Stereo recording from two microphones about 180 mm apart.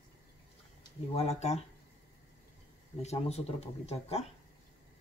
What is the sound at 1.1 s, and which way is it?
Speech, 40° left (ahead or behind).